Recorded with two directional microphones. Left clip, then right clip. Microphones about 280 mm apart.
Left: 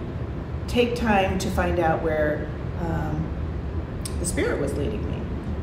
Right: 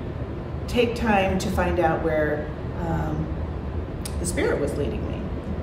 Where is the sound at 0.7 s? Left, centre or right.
Centre.